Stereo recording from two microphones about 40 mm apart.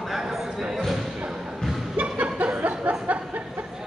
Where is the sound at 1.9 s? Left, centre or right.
Right.